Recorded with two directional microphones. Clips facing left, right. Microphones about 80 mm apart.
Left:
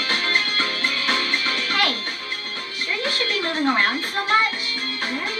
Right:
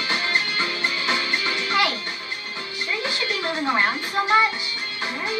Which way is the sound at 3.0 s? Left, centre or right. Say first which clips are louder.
Left 3 dB; left.